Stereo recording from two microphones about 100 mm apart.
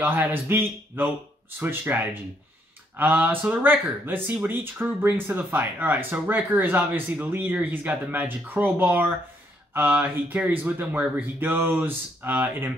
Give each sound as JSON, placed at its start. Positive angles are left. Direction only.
{"t": 0.0, "sound": "speech", "side_deg": -20}